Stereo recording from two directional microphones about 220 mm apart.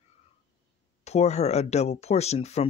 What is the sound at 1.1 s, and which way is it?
Speech, 30° left (ahead or behind).